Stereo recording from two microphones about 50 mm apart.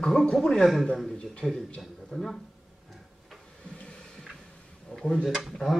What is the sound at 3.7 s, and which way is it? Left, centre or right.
Music, left.